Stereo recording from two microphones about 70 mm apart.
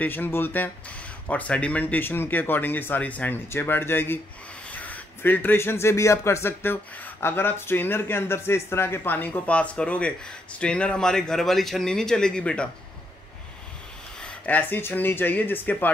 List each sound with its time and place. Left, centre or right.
0.0 s speech: left
3.4 s speech: left; by 12.6 s centre
14.2 s speech: left